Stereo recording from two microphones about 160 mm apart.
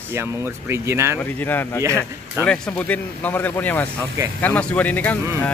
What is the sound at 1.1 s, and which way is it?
Speech, 10° left (ahead or behind).